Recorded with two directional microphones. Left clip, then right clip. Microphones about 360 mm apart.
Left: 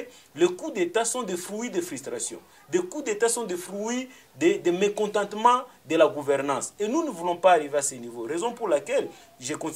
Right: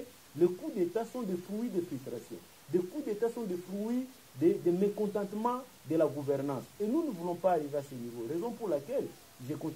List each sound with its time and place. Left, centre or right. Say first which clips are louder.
0.4 s speech: left 6 dB; centre
2.7 s speech: left 6 dB; centre